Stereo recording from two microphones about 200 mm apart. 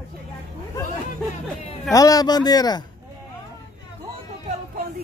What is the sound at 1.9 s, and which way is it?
Speech, 20° left (ahead or behind).